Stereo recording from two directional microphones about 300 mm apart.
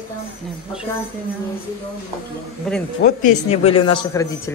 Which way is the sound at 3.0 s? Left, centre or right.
Left.